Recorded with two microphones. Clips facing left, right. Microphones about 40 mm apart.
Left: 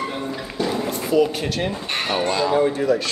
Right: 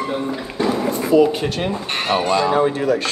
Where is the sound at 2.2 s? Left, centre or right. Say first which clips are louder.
Right 3 dB; centre.